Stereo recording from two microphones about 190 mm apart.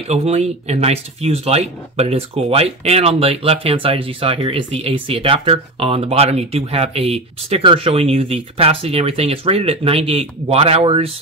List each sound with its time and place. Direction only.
0.1 s speech: 35° right (ahead or behind)